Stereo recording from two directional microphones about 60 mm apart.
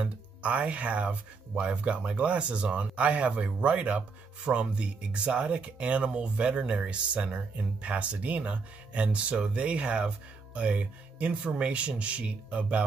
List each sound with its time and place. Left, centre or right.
0.0 s speech: right